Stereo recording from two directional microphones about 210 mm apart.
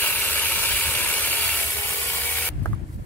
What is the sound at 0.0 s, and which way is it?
Ratchet, 10° left (ahead or behind).